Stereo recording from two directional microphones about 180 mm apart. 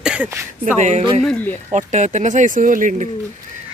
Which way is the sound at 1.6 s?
40° right (ahead or behind).